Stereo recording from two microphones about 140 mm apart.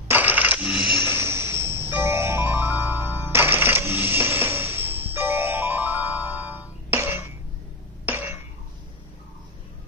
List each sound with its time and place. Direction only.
0.1 s coin: 10° right (ahead or behind)
1.0 s music: 15° right (ahead or behind)
8.0 s cough: 15° right (ahead or behind)